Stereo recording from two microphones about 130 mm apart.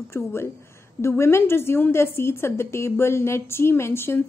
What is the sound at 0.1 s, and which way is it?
A woman's voice, 20° left (ahead or behind).